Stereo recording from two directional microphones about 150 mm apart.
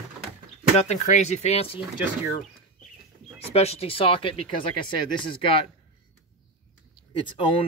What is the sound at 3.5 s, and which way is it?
Speech, 40° left (ahead or behind).